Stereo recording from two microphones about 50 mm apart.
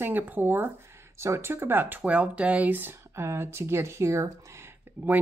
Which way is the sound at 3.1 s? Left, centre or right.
Right.